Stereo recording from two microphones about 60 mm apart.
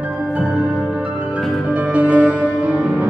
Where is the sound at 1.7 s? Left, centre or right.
Right.